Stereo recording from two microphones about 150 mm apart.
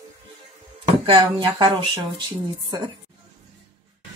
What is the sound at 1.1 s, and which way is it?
Speech, 30° right (ahead or behind).